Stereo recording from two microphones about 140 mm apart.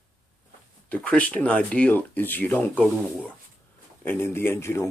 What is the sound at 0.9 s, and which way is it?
Speech, 10° left (ahead or behind).